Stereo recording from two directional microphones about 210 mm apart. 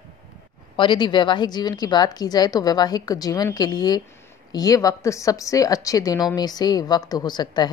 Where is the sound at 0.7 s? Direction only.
20° left (ahead or behind).